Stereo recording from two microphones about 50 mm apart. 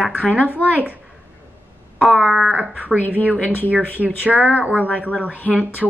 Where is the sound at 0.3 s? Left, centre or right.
Right.